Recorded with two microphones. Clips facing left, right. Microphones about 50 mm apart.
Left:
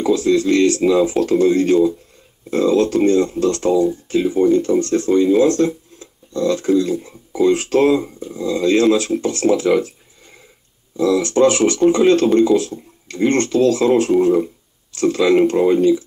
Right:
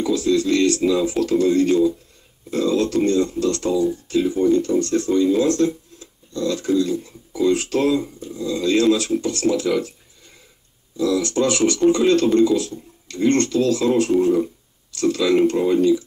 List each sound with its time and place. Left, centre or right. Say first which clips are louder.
0.0 s speech: left 3 dB; left
5.9 s a sound: left 5 dB; left
6.8 s speech: left 2 dB; left
12.3 s speech: left 2 dB; centre
12.5 s speech: left 5 dB; left
14.9 s speech: left 3 dB; left